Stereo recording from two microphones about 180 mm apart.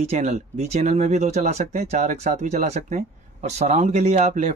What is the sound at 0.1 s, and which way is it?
Speech, 40° right (ahead or behind).